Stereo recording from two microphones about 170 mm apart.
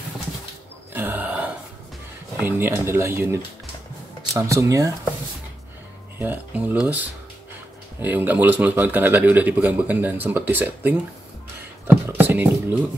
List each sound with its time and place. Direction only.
0.9 s a sound: 10° right (ahead or behind)
2.3 s a man's voice: 10° right (ahead or behind)
6.1 s a man's voice: 10° right (ahead or behind)
11.9 s beatboxing: 10° right (ahead or behind)